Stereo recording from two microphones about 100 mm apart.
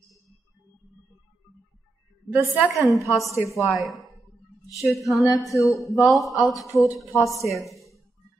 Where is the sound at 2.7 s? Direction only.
30° left (ahead or behind).